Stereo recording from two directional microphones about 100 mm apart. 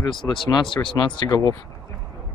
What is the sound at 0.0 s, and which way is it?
Speech, 55° left (ahead or behind).